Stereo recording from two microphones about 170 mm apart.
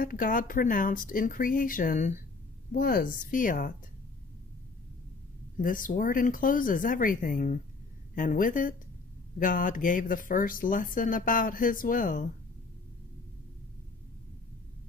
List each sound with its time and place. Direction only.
0.0 s speech: 55° left (ahead or behind)
5.6 s speech: 55° left (ahead or behind)